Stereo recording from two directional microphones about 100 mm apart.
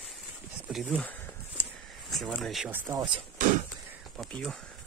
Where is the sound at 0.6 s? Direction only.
10° right (ahead or behind).